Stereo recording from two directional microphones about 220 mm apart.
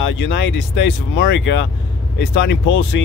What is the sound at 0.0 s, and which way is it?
Speech, 55° left (ahead or behind).